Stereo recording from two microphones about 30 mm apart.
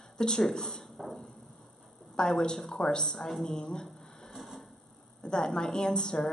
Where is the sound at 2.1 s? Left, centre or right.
Left.